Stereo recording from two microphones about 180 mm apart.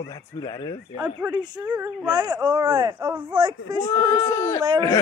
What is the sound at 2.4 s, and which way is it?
Speech, 25° right (ahead or behind).